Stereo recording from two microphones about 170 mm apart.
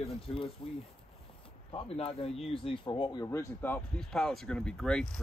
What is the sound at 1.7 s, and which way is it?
Speech, 35° left (ahead or behind).